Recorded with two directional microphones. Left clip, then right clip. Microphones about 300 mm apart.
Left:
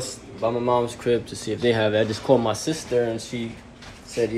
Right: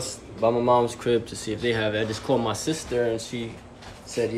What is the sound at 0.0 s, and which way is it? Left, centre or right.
Speech, centre.